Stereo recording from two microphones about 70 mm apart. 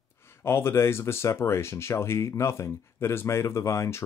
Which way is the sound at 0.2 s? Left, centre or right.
Left.